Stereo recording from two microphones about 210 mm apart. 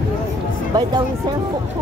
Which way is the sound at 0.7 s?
20° right (ahead or behind).